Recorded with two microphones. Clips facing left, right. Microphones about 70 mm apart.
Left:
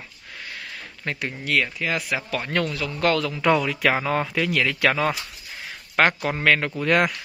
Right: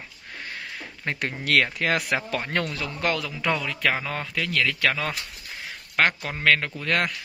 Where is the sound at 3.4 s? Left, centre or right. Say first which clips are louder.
Left 5 dB; centre.